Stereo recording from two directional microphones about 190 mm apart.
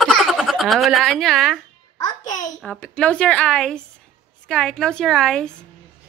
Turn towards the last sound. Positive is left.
turn(degrees=5)  # may be behind; listen again after turning